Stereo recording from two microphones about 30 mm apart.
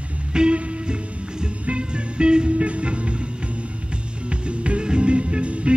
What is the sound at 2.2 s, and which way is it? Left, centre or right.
Music, right.